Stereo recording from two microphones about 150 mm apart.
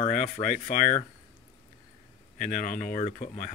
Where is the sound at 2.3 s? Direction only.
55° left (ahead or behind).